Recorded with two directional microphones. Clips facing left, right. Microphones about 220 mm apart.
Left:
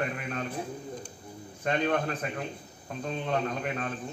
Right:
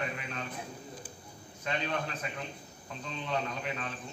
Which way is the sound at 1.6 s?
50° left (ahead or behind).